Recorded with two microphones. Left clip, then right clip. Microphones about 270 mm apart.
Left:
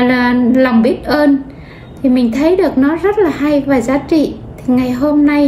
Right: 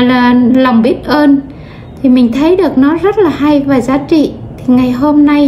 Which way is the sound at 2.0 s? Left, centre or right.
Centre.